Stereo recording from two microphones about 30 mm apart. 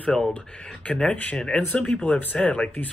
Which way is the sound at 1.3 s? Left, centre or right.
Left.